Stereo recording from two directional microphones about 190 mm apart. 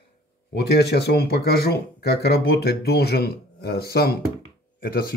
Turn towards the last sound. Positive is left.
turn(degrees=55)  # may be behind; listen again after turning